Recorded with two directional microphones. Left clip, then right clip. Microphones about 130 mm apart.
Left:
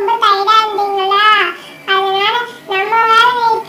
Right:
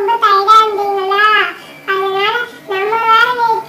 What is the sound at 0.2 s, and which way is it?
Cat, 50° left (ahead or behind).